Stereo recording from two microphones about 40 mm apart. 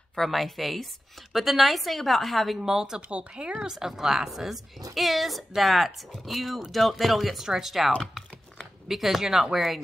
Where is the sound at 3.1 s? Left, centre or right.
Right.